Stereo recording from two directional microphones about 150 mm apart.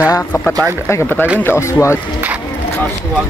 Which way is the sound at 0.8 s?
15° left (ahead or behind).